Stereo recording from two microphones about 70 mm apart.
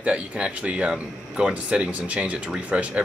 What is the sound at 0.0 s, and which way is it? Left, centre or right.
Speech, centre.